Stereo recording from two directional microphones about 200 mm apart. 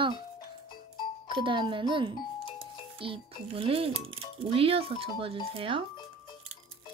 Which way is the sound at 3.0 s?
25° right (ahead or behind).